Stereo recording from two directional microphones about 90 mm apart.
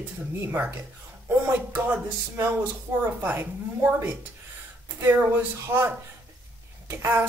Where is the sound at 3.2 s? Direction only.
20° right (ahead or behind).